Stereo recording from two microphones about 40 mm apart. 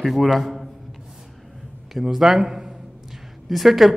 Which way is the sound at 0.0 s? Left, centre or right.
Centre.